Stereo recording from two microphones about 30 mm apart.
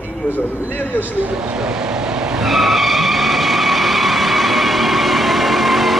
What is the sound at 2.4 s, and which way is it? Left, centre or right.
Skidding, centre.